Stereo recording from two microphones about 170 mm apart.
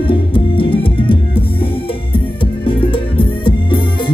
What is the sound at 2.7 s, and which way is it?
Music, 30° left (ahead or behind).